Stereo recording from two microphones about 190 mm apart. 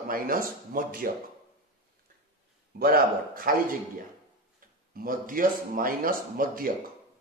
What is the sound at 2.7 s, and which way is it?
A man's voice, 50° right (ahead or behind).